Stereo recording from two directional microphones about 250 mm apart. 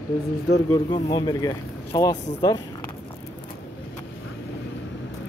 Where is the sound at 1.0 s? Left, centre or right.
Centre.